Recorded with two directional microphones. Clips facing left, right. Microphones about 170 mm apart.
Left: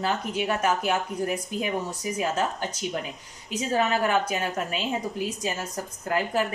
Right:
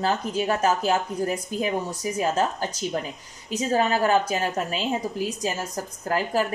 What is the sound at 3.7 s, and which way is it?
Speech, 35° right (ahead or behind).